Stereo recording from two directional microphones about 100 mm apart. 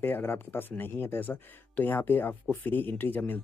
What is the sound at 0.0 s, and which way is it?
Speech, 20° left (ahead or behind).